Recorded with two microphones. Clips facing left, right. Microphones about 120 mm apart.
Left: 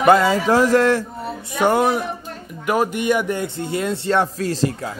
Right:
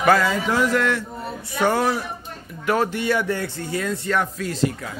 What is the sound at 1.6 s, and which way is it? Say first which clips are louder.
A man's voice: left 3 dB; 15° left (ahead or behind).